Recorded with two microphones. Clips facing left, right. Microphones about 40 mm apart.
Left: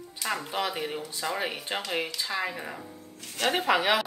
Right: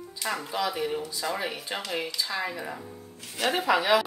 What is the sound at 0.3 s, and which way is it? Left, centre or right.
Speech, left.